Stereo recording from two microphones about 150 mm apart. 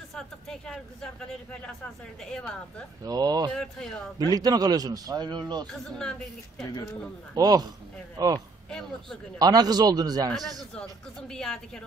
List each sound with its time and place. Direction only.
0.1 s a sound: 5° left (ahead or behind)
3.0 s a man's voice: 25° right (ahead or behind)
3.5 s speech: 5° left (ahead or behind)
4.2 s a man's voice: 25° right (ahead or behind)
6.7 s speech: 20° left (ahead or behind)
7.3 s a man's voice: 25° right (ahead or behind)
8.6 s speech: 5° left (ahead or behind)
9.4 s a man's voice: 25° right (ahead or behind)
10.3 s speech: centre (ahead or behind)